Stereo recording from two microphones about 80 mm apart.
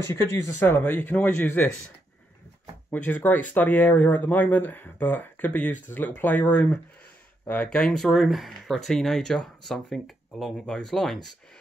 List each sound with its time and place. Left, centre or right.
0.1 s speech: left
2.9 s speech: left
7.7 s speech: centre